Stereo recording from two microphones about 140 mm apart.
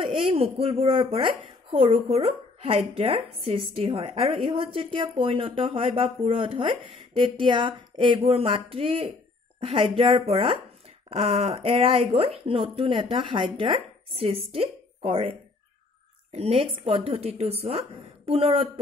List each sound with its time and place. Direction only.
0.0 s a woman's voice: 40° right (ahead or behind)